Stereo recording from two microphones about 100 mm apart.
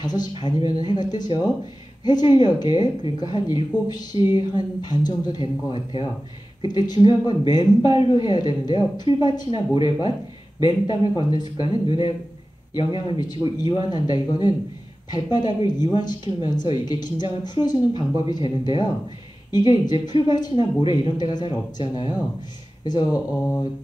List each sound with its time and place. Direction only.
0.0 s speech: 45° left (ahead or behind)